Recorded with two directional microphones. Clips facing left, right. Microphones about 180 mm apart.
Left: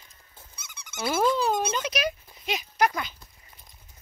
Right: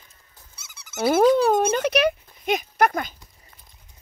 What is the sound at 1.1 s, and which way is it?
Speech, 55° right (ahead or behind).